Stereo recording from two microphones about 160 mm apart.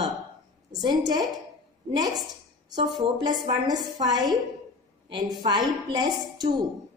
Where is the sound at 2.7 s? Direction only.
25° right (ahead or behind).